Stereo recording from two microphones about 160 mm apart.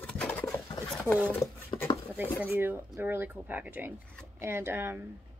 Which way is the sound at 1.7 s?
25° left (ahead or behind).